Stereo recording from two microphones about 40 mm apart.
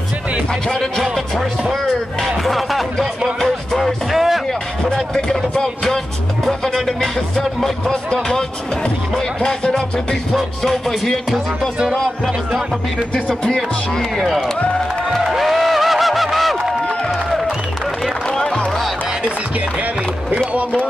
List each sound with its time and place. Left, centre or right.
0.7 s music: centre
2.2 s speech: centre
3.3 s music: centre
4.8 s a sound: centre
6.4 s music: centre
13.9 s music: centre